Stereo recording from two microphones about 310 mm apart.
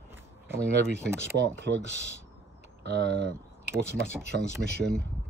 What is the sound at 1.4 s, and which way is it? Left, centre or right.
Speech, right.